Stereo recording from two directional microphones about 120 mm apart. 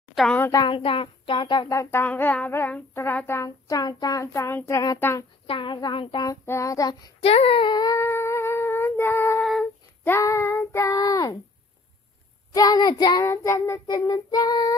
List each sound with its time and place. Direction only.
0.1 s a sound: centre (ahead or behind)
0.7 s child singing: 45° left (ahead or behind)
1.7 s child singing: 25° left (ahead or behind)
5.5 s child singing: 40° left (ahead or behind)
6.4 s child singing: 25° left (ahead or behind)
7.2 s humming: 50° left (ahead or behind); by 9.4 s 20° left (ahead or behind)
9.4 s humming: centre (ahead or behind)
10.0 s child singing: 20° left (ahead or behind)
12.5 s child singing: 35° left (ahead or behind)
13.3 s child singing: 20° left (ahead or behind)
13.8 s child singing: 35° left (ahead or behind)